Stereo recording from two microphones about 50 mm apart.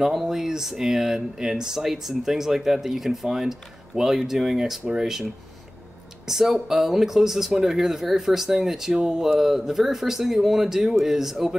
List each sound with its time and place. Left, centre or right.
0.0 s speech: centre
6.2 s speech: centre